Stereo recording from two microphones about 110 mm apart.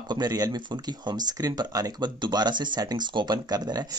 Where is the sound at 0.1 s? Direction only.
35° right (ahead or behind).